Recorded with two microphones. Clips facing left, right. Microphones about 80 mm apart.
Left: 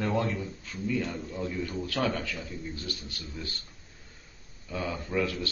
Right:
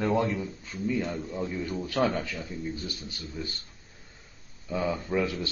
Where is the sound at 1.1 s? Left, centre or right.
Centre.